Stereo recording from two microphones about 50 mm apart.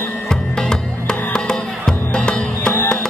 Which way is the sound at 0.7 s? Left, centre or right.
Centre.